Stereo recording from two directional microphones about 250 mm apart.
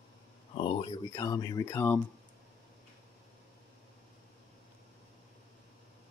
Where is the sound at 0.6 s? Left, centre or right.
Centre.